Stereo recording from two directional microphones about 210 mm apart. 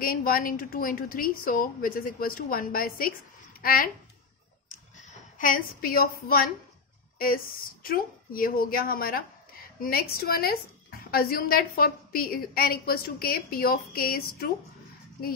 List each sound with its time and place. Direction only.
0.0 s a woman's voice: 45° left (ahead or behind)
4.9 s a woman's voice: 35° left (ahead or behind)